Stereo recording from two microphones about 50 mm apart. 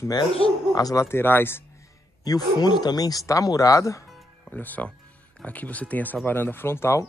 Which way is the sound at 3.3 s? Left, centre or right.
Left.